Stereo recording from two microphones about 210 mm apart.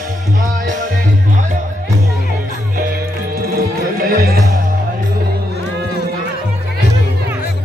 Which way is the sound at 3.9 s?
45° right (ahead or behind).